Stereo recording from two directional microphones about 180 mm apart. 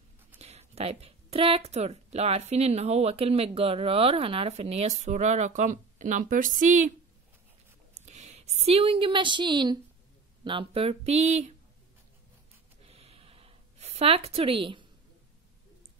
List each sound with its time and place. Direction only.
0.4 s a woman's voice: 35° right (ahead or behind)
8.0 s a woman's voice: 40° right (ahead or behind)
12.8 s a sound: 35° right (ahead or behind)